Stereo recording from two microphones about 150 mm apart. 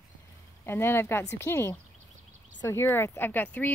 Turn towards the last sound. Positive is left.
turn(degrees=10)  # may be behind; listen again after turning